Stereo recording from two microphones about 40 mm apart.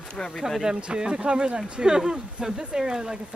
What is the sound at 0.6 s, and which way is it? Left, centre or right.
Speech, right.